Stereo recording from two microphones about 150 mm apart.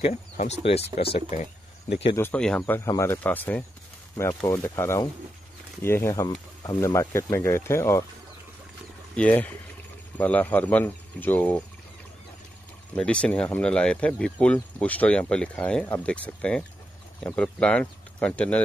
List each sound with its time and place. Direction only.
0.0 s speech: 50° left (ahead or behind)
1.3 s a sound: 55° left (ahead or behind)
2.1 s speech: 10° left (ahead or behind)
2.6 s speech: 15° left (ahead or behind)
9.1 s speech: 10° left (ahead or behind)
12.9 s speech: 5° left (ahead or behind)